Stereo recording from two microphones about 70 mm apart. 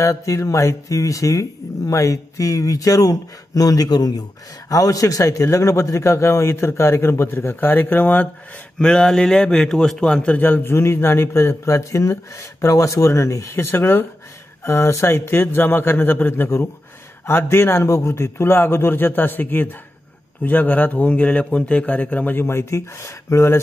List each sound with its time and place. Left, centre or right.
0.0 s speech: left
8.7 s a man's voice: centre
10.3 s a man's voice: left